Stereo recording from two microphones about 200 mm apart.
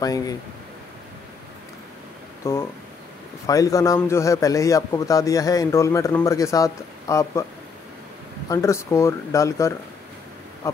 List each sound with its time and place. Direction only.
0.0 s a man's voice: 20° left (ahead or behind)
2.4 s a man's voice: 15° left (ahead or behind)
8.5 s a man's voice: 15° left (ahead or behind)